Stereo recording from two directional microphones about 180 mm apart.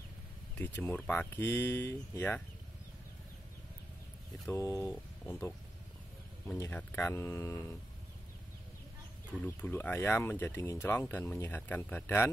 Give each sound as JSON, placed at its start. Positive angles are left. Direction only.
{"t": 0.6, "sound": "speech", "side_deg": 10}
{"t": 4.5, "sound": "speech", "side_deg": 15}
{"t": 6.6, "sound": "speech", "side_deg": 10}
{"t": 9.4, "sound": "speech", "side_deg": 10}